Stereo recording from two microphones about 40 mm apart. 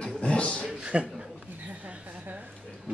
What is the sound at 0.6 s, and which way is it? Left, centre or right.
Speech, right.